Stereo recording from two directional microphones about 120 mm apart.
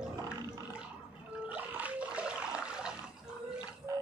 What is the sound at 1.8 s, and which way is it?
Water, 10° right (ahead or behind).